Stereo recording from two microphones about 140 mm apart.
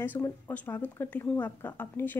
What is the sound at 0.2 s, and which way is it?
Speech, 25° left (ahead or behind).